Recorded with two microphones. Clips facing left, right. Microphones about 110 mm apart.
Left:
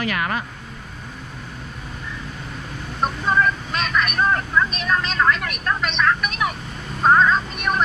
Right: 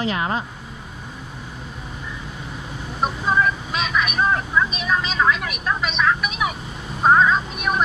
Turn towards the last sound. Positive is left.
turn(degrees=-5)  # may be behind; listen again after turning